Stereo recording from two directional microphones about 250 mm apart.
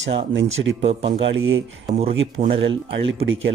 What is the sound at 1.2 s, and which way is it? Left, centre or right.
Speech, right.